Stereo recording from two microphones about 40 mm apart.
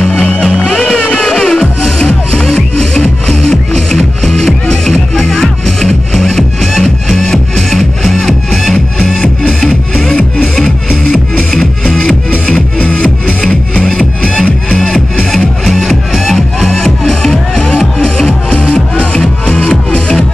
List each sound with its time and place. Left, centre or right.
0.0 s music: left; by 8.7 s centre
12.5 s music: left
13.7 s music: centre
15.3 s music: centre
16.6 s music: centre